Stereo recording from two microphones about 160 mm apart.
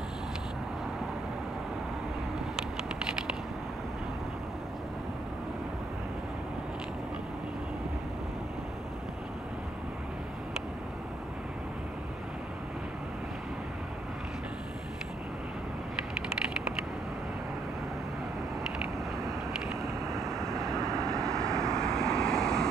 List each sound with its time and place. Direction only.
19.8 s vehicle: 20° right (ahead or behind)
21.1 s vehicle: 5° left (ahead or behind)